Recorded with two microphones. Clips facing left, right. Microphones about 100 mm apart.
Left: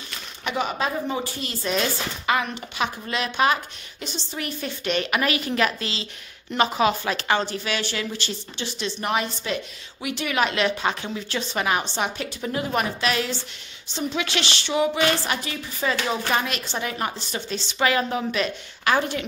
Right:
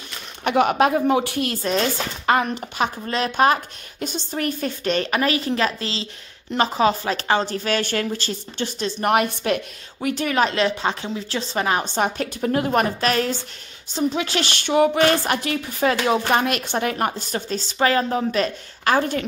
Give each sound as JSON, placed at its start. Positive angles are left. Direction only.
{"t": 0.4, "sound": "speech", "side_deg": -55}
{"t": 1.7, "sound": "speech", "side_deg": -40}
{"t": 10.0, "sound": "speech", "side_deg": -40}